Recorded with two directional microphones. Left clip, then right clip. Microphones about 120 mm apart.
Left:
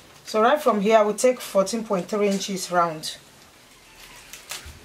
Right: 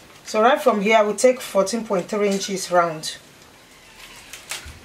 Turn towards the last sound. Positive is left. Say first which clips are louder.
# right 3 dB
turn(degrees=15)  # may be behind; listen again after turning